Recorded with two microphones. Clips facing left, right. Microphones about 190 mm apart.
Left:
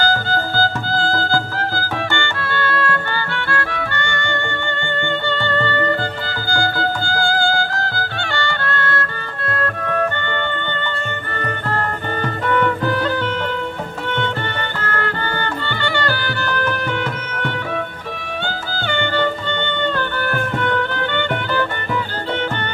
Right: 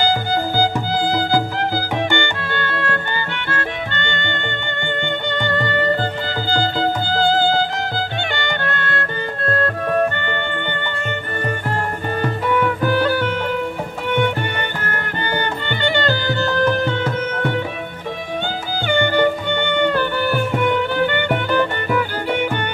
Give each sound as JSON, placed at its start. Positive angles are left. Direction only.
{"t": 0.0, "sound": "music", "side_deg": -15}
{"t": 5.4, "sound": "music", "side_deg": -15}
{"t": 11.7, "sound": "music", "side_deg": -10}
{"t": 14.9, "sound": "music", "side_deg": -15}
{"t": 18.8, "sound": "music", "side_deg": -15}